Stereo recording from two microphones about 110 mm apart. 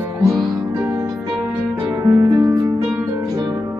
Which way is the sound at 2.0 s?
25° right (ahead or behind).